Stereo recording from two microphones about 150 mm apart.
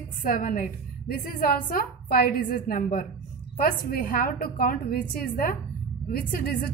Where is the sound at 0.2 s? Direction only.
70° left (ahead or behind).